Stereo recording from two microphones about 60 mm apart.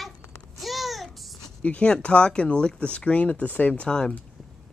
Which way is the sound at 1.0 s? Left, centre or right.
Centre.